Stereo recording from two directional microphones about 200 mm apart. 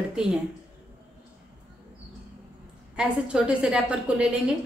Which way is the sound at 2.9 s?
5° right (ahead or behind).